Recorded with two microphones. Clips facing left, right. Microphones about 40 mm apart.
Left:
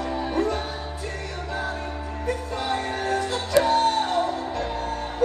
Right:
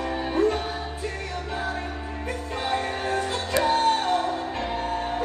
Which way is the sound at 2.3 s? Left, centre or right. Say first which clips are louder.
Left 1 dB; right.